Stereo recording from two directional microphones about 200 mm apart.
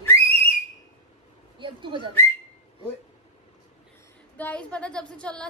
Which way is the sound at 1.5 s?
25° right (ahead or behind).